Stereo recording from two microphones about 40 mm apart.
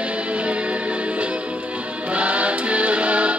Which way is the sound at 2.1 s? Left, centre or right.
Right.